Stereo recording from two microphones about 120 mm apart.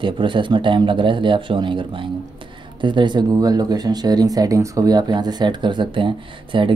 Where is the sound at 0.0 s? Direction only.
45° right (ahead or behind).